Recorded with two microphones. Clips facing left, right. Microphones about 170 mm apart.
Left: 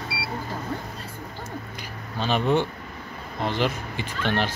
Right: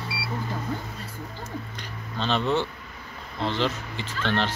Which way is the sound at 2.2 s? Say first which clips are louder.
Left 2 dB; 10° left (ahead or behind).